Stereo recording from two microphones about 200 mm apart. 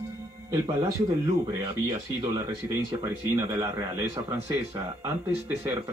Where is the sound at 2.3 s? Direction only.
15° right (ahead or behind).